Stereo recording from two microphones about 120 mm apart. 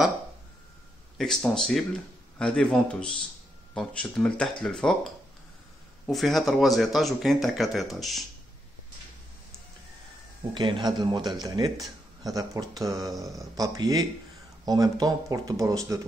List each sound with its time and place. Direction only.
1.1 s speech: 5° left (ahead or behind)
10.5 s speech: 40° right (ahead or behind)